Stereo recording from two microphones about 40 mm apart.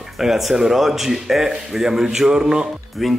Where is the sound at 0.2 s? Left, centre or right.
Centre.